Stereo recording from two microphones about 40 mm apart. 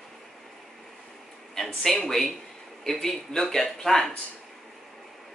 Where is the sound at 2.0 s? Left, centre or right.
Centre.